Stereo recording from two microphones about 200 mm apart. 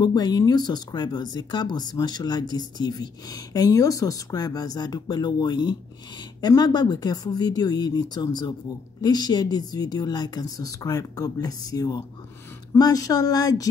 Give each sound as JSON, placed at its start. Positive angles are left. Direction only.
{"t": 0.0, "sound": "speech", "side_deg": 20}